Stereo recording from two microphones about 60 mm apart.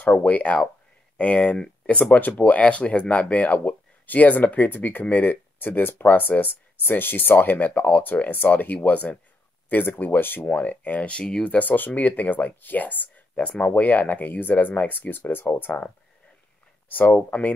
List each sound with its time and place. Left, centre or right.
0.0 s speech: left
11.5 s speech: left
17.1 s speech: left